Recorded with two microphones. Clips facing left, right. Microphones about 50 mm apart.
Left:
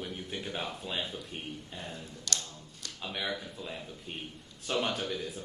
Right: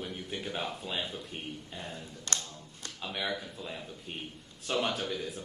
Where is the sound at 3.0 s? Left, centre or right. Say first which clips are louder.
Right 1 dB; centre.